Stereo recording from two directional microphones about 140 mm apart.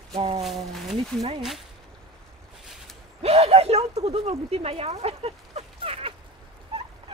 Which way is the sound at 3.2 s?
50° right (ahead or behind).